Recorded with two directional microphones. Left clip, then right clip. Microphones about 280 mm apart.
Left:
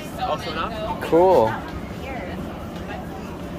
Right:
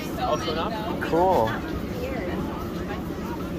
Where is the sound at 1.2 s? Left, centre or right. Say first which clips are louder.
Left 6 dB; left.